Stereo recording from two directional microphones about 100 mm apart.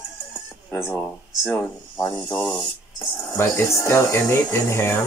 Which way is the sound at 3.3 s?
25° left (ahead or behind).